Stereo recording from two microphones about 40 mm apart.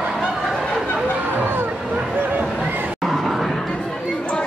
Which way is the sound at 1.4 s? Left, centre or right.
Right.